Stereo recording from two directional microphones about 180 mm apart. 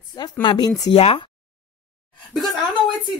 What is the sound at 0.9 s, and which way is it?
Speech, 30° left (ahead or behind).